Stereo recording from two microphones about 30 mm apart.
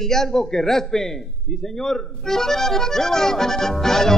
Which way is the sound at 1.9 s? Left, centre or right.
Centre.